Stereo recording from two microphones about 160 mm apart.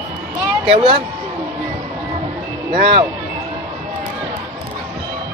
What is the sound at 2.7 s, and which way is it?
Speech, 30° right (ahead or behind).